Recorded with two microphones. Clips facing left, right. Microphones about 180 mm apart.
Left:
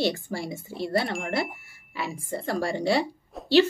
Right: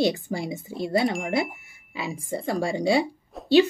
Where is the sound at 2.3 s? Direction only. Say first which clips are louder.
Right 2 dB; 15° right (ahead or behind).